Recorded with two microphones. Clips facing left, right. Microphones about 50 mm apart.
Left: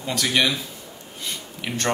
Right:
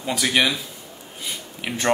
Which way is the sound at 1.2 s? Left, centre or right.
Centre.